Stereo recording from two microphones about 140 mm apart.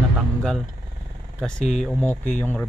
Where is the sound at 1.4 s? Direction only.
5° left (ahead or behind).